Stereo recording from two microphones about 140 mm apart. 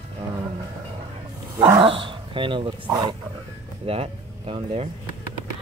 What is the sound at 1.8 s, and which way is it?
Speech, 40° right (ahead or behind).